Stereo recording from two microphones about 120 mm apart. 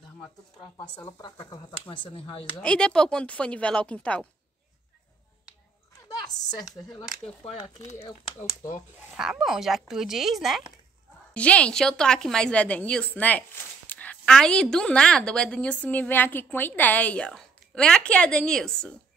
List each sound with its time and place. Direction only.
1.2 s speech: 40° left (ahead or behind)
2.6 s a woman's voice: 5° left (ahead or behind)
6.0 s a woman's voice: 30° left (ahead or behind)
9.1 s speech: 5° right (ahead or behind)
11.3 s a woman's voice: 10° left (ahead or behind)